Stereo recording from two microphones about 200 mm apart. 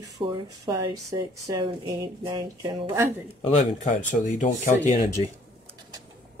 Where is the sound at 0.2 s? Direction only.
20° right (ahead or behind).